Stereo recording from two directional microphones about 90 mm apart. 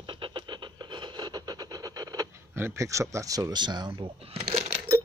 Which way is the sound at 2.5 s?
30° right (ahead or behind).